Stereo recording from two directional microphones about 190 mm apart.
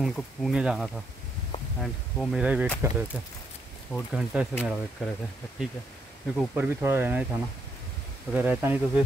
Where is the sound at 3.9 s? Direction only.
Centre (ahead or behind).